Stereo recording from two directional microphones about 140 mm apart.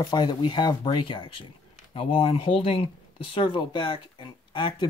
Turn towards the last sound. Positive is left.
turn(degrees=35)  # may be behind; listen again after turning